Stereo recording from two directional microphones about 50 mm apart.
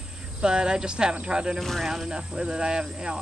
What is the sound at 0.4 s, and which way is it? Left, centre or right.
Speech, centre.